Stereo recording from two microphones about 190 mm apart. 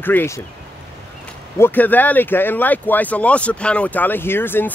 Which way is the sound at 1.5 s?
10° left (ahead or behind).